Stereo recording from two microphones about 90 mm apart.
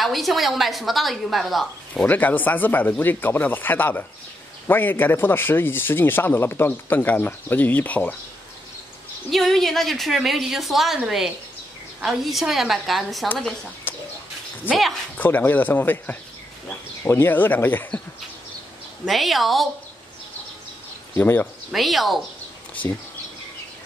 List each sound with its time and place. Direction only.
0.0 s a woman's voice: centre (ahead or behind)
2.0 s speech: 20° left (ahead or behind)
9.3 s a woman's voice: centre (ahead or behind)
13.9 s bird: 25° left (ahead or behind)
15.1 s speech: 20° left (ahead or behind)
19.0 s a woman's voice: centre (ahead or behind)
21.2 s speech: 20° left (ahead or behind)
21.7 s a woman's voice: centre (ahead or behind)